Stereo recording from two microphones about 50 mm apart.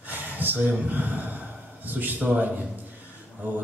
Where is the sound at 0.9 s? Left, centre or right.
Right.